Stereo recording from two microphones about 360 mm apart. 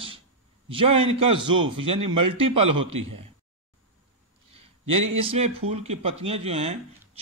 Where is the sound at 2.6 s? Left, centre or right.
Right.